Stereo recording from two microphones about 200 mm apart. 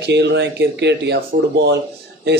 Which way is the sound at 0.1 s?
60° right (ahead or behind).